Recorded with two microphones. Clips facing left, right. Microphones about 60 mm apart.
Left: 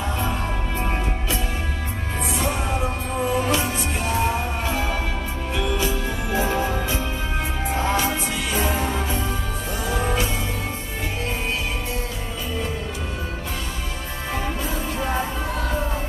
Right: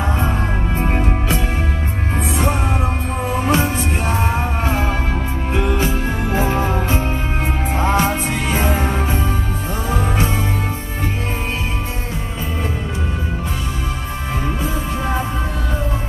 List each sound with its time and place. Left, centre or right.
0.0 s music: right